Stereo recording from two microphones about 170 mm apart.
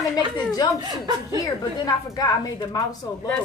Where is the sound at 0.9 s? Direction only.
25° right (ahead or behind).